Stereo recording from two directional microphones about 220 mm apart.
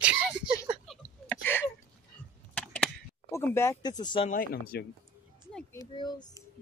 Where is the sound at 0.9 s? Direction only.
10° left (ahead or behind).